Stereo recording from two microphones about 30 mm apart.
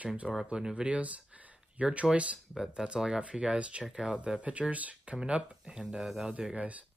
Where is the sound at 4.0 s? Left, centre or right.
Right.